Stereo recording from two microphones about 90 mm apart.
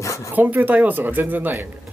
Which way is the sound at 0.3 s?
20° right (ahead or behind).